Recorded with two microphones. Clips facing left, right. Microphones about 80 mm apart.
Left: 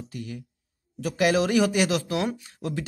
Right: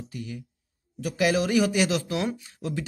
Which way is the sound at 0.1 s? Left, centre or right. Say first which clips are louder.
Even; left.